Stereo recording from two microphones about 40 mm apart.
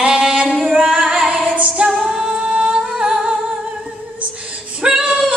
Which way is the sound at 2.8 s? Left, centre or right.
Right.